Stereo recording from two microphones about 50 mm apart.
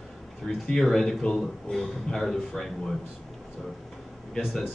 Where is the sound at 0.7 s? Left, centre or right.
Centre.